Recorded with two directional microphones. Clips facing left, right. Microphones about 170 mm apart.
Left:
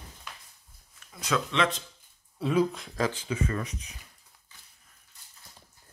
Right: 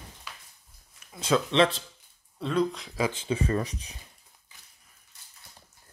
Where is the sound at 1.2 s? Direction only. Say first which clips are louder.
Right 5 dB; 30° right (ahead or behind).